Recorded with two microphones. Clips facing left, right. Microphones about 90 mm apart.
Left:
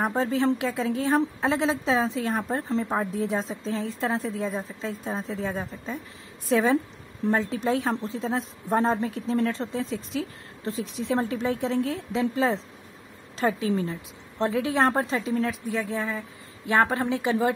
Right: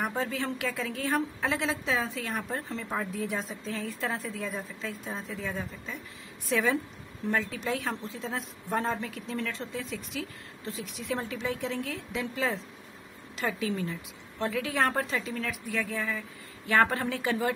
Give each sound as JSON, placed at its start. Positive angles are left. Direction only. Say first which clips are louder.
{"t": 0.0, "sound": "a woman's voice", "louder": "left 7 dB", "side_deg": 30}